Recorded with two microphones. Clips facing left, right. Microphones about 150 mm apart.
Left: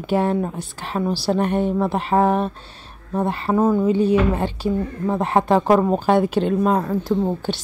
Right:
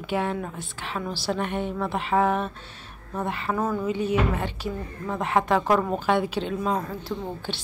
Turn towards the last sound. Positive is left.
turn(degrees=40)  # may be behind; listen again after turning